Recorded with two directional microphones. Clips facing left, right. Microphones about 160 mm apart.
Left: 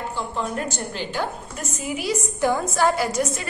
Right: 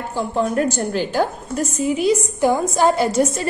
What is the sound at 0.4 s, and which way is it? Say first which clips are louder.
Speech: right 10 dB; 50° right (ahead or behind).